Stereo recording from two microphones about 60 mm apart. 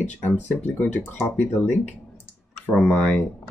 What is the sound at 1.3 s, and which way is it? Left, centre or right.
Speech, left.